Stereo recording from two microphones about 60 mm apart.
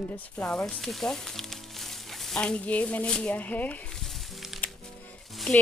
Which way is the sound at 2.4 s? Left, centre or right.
Centre.